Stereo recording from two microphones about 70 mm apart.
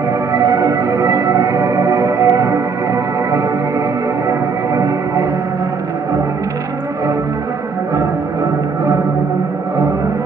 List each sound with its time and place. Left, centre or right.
0.3 s music: right